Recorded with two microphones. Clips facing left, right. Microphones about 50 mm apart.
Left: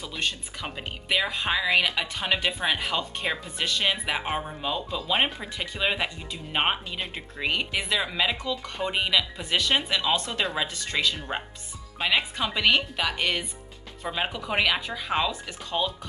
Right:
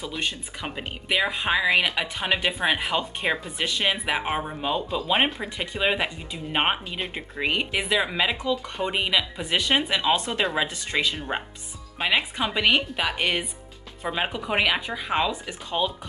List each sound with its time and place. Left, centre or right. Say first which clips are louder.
0.0 s speech: right 1 dB; centre